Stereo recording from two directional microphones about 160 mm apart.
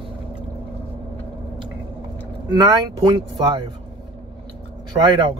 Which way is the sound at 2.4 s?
25° right (ahead or behind).